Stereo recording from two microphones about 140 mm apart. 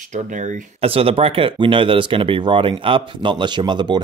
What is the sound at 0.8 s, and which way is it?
Speech, 40° right (ahead or behind).